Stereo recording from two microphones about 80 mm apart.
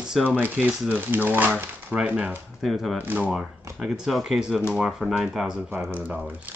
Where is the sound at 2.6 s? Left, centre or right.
Centre.